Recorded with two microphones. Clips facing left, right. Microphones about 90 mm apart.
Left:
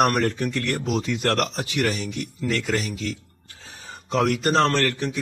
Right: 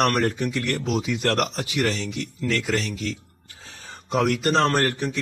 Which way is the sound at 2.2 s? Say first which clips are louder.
Even; 15° left (ahead or behind).